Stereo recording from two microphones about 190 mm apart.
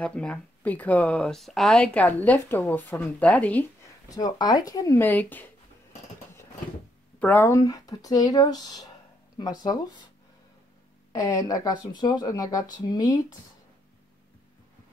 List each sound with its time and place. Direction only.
0.0 s speech: 5° left (ahead or behind)
4.2 s speech: 20° left (ahead or behind)
7.2 s speech: 10° left (ahead or behind)
11.1 s speech: 20° left (ahead or behind)